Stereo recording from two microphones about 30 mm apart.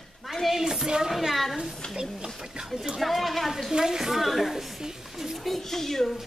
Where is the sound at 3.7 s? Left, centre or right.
Centre.